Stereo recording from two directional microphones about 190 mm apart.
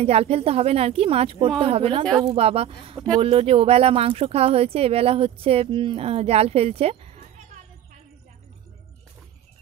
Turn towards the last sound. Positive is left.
turn(degrees=-35)  # may be behind; listen again after turning